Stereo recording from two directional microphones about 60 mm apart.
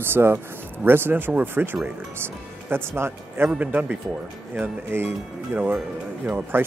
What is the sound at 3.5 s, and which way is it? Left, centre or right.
Speech, right.